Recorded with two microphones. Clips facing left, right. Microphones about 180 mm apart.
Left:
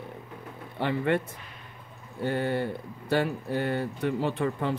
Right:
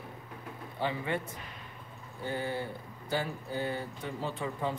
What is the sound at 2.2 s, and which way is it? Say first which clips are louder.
Speech: left 7 dB; 65° left (ahead or behind).